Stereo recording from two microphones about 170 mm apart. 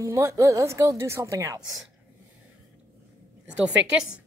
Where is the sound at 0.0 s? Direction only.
15° right (ahead or behind).